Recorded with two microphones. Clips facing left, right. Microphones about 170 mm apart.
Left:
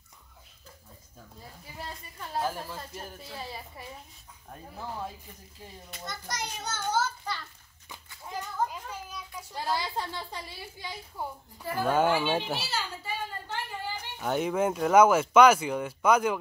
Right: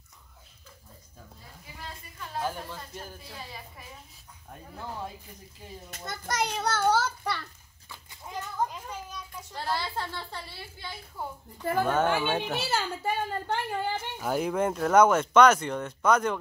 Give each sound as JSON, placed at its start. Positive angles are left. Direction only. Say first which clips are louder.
{"t": 2.4, "sound": "speech", "louder": "left 1 dB", "side_deg": 5}
{"t": 4.5, "sound": "speech", "louder": "even", "side_deg": 0}
{"t": 5.9, "sound": "a child's voice", "louder": "right 3 dB", "side_deg": -50}
{"t": 8.6, "sound": "a child's voice", "louder": "even", "side_deg": 10}
{"t": 12.5, "sound": "a child's voice", "louder": "right 5 dB", "side_deg": -50}
{"t": 14.1, "sound": "speech", "louder": "left 1 dB", "side_deg": 0}